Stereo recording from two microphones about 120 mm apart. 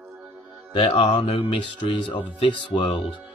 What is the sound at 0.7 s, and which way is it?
Speech, 45° left (ahead or behind).